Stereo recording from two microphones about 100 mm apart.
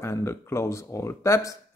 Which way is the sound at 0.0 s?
25° left (ahead or behind).